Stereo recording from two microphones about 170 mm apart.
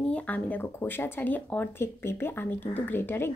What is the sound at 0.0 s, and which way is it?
Speech, 10° left (ahead or behind).